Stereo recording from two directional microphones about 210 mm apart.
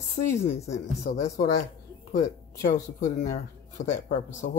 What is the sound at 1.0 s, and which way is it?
Speech, 35° left (ahead or behind).